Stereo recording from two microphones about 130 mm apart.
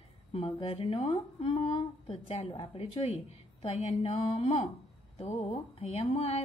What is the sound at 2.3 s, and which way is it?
Speech, 60° left (ahead or behind).